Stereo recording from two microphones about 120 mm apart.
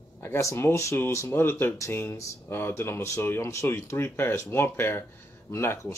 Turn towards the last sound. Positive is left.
turn(degrees=20)  # may be behind; listen again after turning